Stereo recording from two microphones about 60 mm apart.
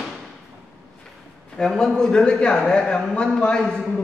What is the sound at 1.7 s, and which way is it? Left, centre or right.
Speech, centre.